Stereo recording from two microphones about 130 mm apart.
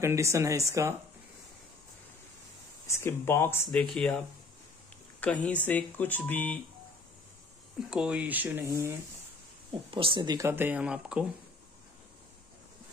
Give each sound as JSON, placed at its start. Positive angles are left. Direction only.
{"t": 0.0, "sound": "speech", "side_deg": -20}
{"t": 2.9, "sound": "speech", "side_deg": 20}
{"t": 3.9, "sound": "speech", "side_deg": 5}
{"t": 5.2, "sound": "speech", "side_deg": 10}
{"t": 7.9, "sound": "speech", "side_deg": -10}
{"t": 9.7, "sound": "speech", "side_deg": -40}